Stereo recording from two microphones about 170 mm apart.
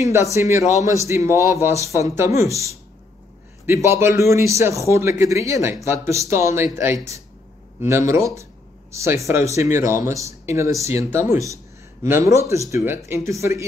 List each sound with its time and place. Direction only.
0.0 s speech: 15° right (ahead or behind)